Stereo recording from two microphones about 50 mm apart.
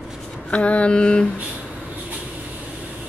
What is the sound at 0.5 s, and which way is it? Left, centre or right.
Speech, left.